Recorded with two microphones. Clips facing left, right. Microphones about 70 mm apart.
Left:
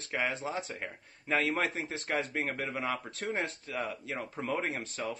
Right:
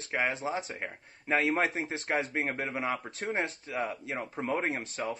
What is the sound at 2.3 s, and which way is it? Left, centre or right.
Speech, right.